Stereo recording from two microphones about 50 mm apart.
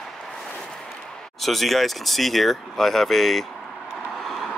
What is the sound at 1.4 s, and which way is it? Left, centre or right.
Speech, centre.